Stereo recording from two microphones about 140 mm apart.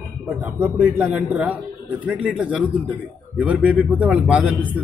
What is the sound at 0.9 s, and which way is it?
Speech, 10° right (ahead or behind).